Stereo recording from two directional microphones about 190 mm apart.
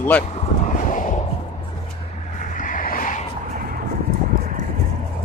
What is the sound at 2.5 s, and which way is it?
Vehicle, 45° left (ahead or behind).